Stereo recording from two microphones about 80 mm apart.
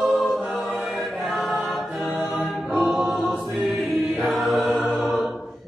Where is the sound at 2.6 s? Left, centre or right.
Centre.